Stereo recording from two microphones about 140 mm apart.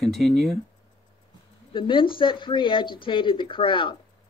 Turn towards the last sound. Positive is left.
turn(degrees=35)  # may be behind; listen again after turning